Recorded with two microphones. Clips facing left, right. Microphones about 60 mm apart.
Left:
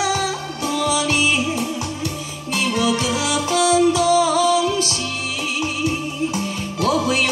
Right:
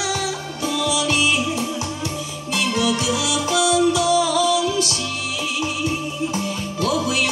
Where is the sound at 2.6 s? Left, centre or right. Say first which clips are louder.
Left 1 dB; left.